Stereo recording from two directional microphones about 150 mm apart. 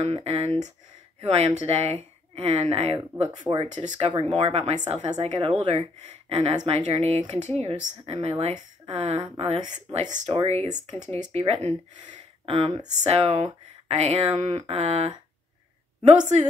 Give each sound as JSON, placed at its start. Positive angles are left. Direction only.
{"t": 0.0, "sound": "speech", "side_deg": -40}
{"t": 3.3, "sound": "speech", "side_deg": -30}
{"t": 9.9, "sound": "speech", "side_deg": -55}
{"t": 16.2, "sound": "speech", "side_deg": -50}